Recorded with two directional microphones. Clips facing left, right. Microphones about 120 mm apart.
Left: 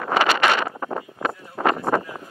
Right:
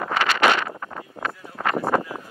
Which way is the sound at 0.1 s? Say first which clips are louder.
Left 5 dB; 15° left (ahead or behind).